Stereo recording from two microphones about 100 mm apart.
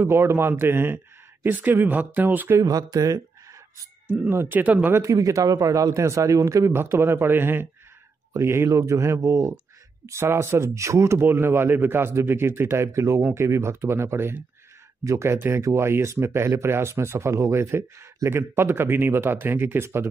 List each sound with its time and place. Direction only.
0.0 s speech: 25° right (ahead or behind)
2.5 s a man's voice: 40° right (ahead or behind)
4.1 s speech: 20° right (ahead or behind)
5.0 s a man's voice: 30° right (ahead or behind)